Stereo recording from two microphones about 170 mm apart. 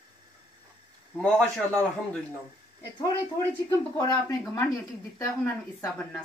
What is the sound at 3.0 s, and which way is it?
Speech, 20° left (ahead or behind).